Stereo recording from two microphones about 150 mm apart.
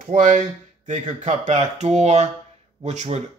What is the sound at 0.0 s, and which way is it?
Speech, 60° right (ahead or behind).